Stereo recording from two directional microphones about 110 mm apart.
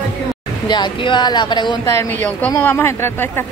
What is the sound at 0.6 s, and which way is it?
Speech, 40° left (ahead or behind).